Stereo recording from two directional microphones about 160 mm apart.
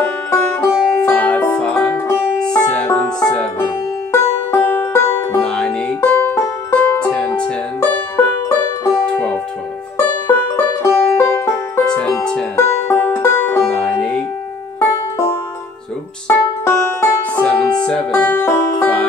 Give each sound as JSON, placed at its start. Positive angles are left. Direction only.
{"t": 0.3, "sound": "music", "side_deg": 15}
{"t": 9.0, "sound": "music", "side_deg": 10}
{"t": 11.8, "sound": "music", "side_deg": 5}